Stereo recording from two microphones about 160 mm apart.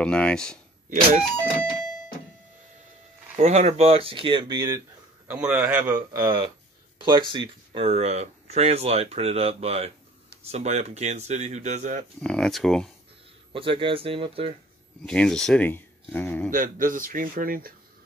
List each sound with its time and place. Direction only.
0.0 s speech: 5° left (ahead or behind)
3.3 s speech: 50° right (ahead or behind); by 4.7 s 25° right (ahead or behind)
5.3 s a man's voice: 10° right (ahead or behind); by 12.1 s 45° right (ahead or behind)
12.2 s speech: 5° left (ahead or behind)
13.5 s speech: 35° right (ahead or behind)
15.0 s speech: 5° left (ahead or behind)
16.5 s speech: 60° right (ahead or behind)